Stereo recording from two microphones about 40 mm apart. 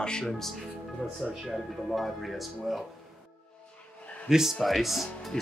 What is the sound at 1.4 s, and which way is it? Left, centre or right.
Speech, centre.